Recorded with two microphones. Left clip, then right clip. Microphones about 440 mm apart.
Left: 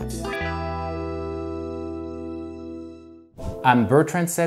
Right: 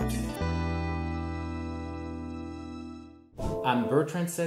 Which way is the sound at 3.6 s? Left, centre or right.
Left.